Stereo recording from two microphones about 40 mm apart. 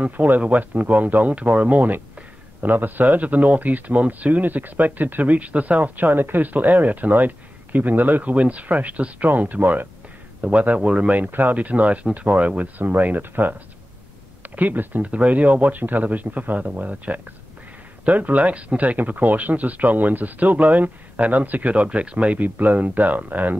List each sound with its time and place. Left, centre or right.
0.0 s speech: right
5.9 s speech: right
9.3 s speech: right
12.8 s speech: right
14.4 s speech: right
15.0 s speech: right
21.7 s speech: right
22.4 s speech: right